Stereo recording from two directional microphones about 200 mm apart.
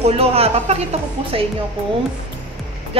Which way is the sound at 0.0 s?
30° right (ahead or behind).